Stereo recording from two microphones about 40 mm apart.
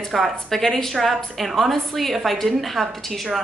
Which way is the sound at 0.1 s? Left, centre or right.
Centre.